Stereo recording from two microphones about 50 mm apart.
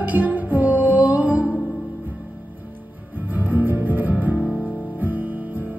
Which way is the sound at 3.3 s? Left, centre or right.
Right.